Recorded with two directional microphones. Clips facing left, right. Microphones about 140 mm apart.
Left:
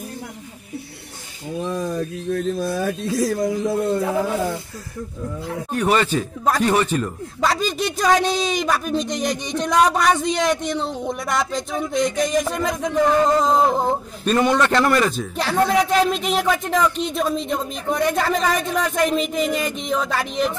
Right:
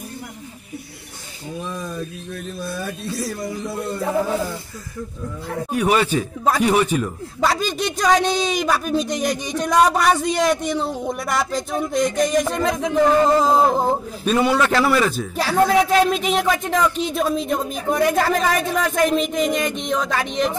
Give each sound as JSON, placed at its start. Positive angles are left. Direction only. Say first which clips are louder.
{"t": 1.6, "sound": "speech", "louder": "left 6 dB", "side_deg": 35}
{"t": 2.0, "sound": "speech", "louder": "left 7 dB", "side_deg": 45}
{"t": 5.7, "sound": "a man's voice", "louder": "right 1 dB", "side_deg": -10}